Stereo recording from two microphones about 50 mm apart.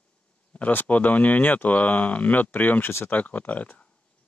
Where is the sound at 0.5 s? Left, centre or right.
Left.